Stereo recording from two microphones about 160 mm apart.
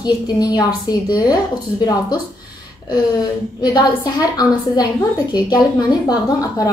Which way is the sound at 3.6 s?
25° left (ahead or behind).